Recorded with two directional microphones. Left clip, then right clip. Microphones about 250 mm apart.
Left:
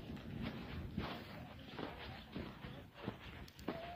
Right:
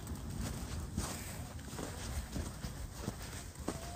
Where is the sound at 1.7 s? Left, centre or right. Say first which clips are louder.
Right 3 dB; right.